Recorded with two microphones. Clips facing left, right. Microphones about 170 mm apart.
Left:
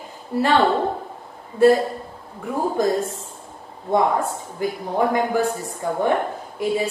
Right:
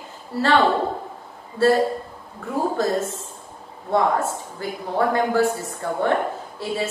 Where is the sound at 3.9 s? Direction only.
15° left (ahead or behind).